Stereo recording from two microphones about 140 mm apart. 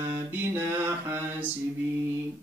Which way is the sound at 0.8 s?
15° right (ahead or behind).